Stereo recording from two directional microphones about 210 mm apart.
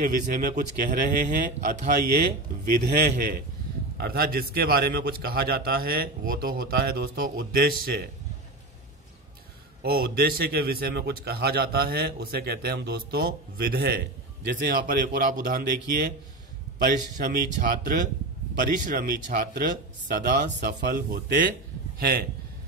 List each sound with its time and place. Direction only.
0.0 s a man's voice: 40° right (ahead or behind)
9.8 s a man's voice: 45° right (ahead or behind)